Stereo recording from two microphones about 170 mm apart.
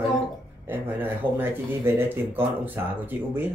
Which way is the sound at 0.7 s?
10° right (ahead or behind).